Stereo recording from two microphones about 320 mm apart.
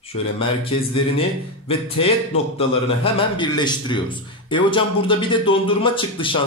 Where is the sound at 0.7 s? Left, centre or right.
Centre.